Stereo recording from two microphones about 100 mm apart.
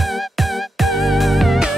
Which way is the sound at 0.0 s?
Centre (ahead or behind).